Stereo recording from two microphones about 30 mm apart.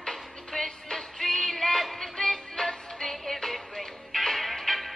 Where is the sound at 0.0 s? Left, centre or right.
Centre.